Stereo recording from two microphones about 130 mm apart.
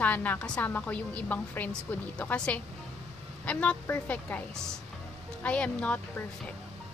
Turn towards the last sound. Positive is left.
turn(degrees=10)  # may be behind; listen again after turning